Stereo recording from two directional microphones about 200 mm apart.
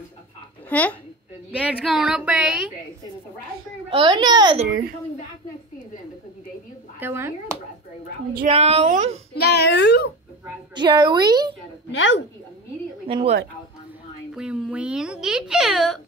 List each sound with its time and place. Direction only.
0.7 s a woman's voice: 5° left (ahead or behind)
1.5 s speech: 5° right (ahead or behind)
3.9 s a woman's voice: 25° right (ahead or behind)
7.0 s speech: 10° right (ahead or behind)
8.5 s a woman's voice: 30° right (ahead or behind)
9.3 s a woman's voice: 55° left (ahead or behind)
10.7 s a woman's voice: 20° right (ahead or behind)
11.9 s a woman's voice: 65° left (ahead or behind)
13.0 s a woman's voice: 30° right (ahead or behind)
14.3 s speech: 5° right (ahead or behind)